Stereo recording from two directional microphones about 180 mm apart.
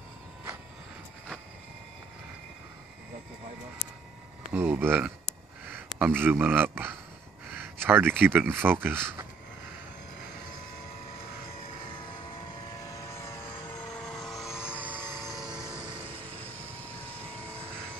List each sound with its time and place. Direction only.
4.5 s a man's voice: 10° right (ahead or behind)
12.8 s vehicle: 15° left (ahead or behind)
13.9 s vehicle: 5° left (ahead or behind); by 15.3 s 10° right (ahead or behind)